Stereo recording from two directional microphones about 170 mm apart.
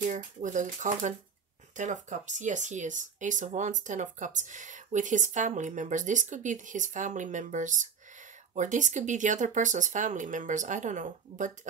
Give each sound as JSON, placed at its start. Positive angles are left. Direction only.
{"t": 0.0, "sound": "speech", "side_deg": -50}